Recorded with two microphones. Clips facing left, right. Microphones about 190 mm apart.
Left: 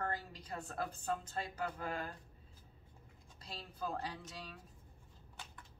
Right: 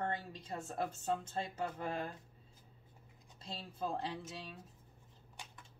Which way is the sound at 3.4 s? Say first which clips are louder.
Right 2 dB; 25° right (ahead or behind).